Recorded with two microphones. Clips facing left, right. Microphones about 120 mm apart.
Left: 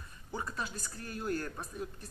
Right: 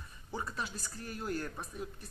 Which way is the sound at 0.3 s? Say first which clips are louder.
Left 1 dB; 5° right (ahead or behind).